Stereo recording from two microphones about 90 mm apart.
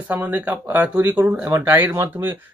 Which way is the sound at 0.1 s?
15° right (ahead or behind).